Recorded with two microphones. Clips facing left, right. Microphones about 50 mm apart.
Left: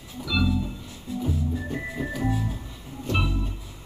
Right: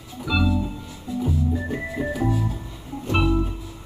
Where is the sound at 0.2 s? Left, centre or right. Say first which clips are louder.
Right 3 dB; right.